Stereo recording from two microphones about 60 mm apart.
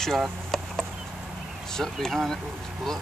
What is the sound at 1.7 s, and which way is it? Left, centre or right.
Speech, centre.